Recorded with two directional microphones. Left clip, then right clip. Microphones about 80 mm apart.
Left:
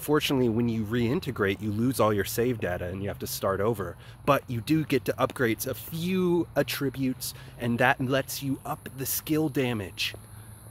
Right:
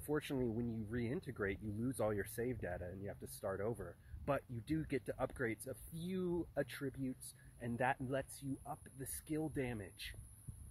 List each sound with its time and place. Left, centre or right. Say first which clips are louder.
0.0 s speech: left 16 dB; left
0.6 s speech: left 16 dB; left
0.8 s speech: left 15 dB; left